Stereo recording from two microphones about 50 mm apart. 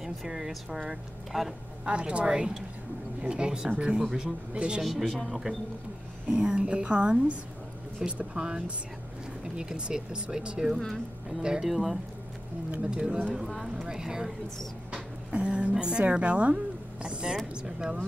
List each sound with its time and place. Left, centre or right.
0.0 s a woman's voice: centre
1.9 s a woman's voice: right
4.8 s a woman's voice: centre
6.2 s a woman's voice: centre
11.7 s a woman's voice: centre
12.9 s speech: centre
14.9 s a sound: right
15.7 s a woman's voice: centre